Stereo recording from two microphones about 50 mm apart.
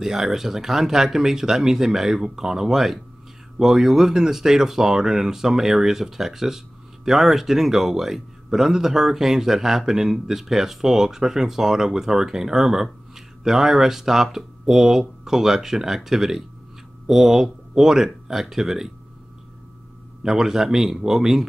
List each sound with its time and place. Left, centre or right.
0.0 s speech: centre
20.2 s speech: centre